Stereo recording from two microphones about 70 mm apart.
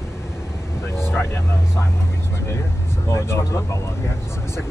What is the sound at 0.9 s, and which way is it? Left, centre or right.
Vehicle, left.